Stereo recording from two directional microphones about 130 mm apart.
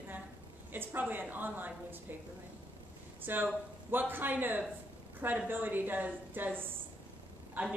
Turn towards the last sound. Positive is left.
turn(degrees=-10)  # may be behind; listen again after turning